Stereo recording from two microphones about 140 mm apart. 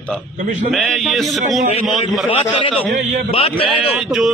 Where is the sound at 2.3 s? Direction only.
40° left (ahead or behind).